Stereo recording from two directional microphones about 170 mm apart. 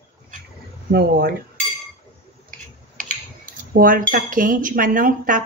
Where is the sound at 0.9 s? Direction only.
65° right (ahead or behind).